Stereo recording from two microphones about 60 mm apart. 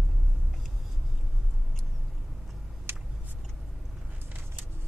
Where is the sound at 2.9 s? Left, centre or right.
Right.